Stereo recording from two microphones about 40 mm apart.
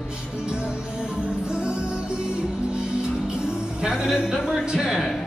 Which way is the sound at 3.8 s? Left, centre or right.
Centre.